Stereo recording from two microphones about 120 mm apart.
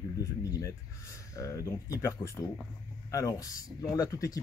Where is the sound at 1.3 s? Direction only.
25° left (ahead or behind).